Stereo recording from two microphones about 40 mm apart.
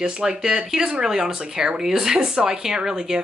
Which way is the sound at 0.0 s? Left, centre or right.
Centre.